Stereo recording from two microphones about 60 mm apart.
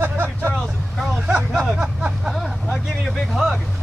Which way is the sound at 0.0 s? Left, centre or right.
Right.